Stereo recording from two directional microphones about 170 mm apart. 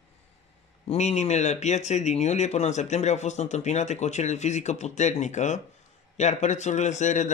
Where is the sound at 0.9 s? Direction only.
40° left (ahead or behind).